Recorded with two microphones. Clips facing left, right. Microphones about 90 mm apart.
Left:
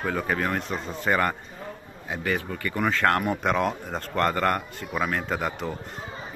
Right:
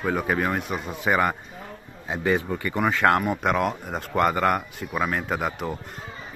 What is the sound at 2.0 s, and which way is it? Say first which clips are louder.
A man's voice: right 4 dB; 20° right (ahead or behind).